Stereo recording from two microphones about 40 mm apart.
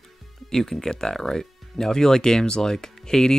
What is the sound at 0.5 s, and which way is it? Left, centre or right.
Speech, centre.